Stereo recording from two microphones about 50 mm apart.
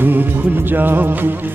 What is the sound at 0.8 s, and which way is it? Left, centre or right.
Music, right.